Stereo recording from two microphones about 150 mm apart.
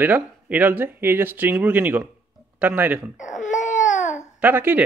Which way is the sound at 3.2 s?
55° left (ahead or behind).